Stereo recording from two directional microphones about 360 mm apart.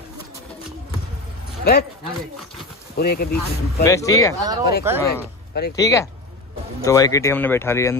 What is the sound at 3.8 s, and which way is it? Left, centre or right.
Speech, centre.